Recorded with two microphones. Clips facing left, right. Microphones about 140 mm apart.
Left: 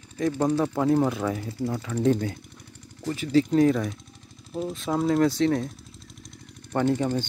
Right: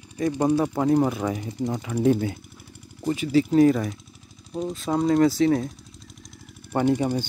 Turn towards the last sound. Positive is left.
turn(degrees=-10)  # may be behind; listen again after turning